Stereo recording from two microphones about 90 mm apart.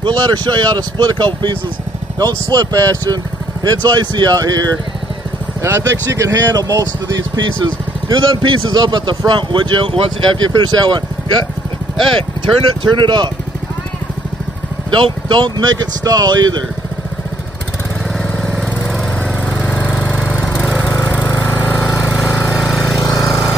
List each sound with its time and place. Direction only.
0.1 s speech: 50° right (ahead or behind)
5.6 s speech: 30° right (ahead or behind); by 10.4 s 75° right (ahead or behind)
10.4 s speech: 50° right (ahead or behind)
12.8 s speech: 60° right (ahead or behind)
14.9 s speech: 60° right (ahead or behind)
19.5 s lawn mower: 10° left (ahead or behind)
22.1 s lawn mower: 5° left (ahead or behind)
23.0 s lawn mower: 50° left (ahead or behind)